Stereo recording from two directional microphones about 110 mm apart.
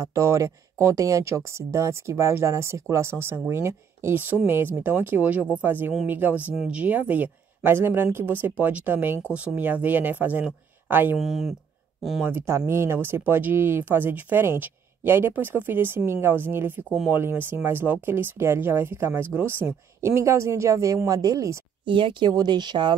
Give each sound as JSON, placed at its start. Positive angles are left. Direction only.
{"t": 0.0, "sound": "speech", "side_deg": -30}
{"t": 11.1, "sound": "speech", "side_deg": 0}
{"t": 12.2, "sound": "speech", "side_deg": -20}
{"t": 21.8, "sound": "speech", "side_deg": -50}